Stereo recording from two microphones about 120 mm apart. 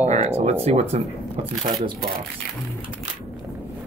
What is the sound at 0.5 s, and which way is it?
Speech, 60° right (ahead or behind).